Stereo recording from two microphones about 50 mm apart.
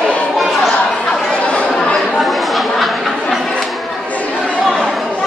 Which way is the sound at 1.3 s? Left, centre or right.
Left.